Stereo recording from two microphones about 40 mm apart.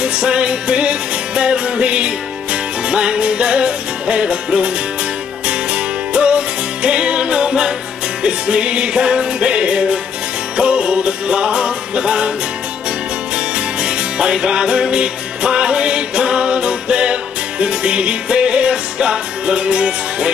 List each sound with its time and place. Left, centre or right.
0.0 s music: right
13.8 s music: right